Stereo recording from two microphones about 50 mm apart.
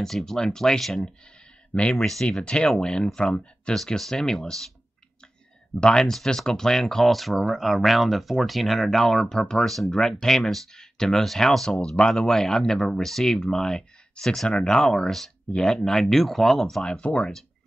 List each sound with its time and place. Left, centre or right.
0.0 s speech: centre
1.7 s speech: left
3.7 s speech: centre
5.8 s speech: centre
16.8 s speech: left